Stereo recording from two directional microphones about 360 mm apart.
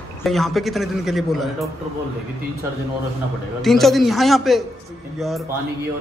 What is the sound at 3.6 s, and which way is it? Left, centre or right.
A man's voice, centre.